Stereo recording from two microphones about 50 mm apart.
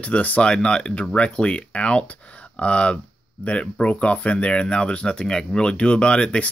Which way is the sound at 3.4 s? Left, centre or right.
Left.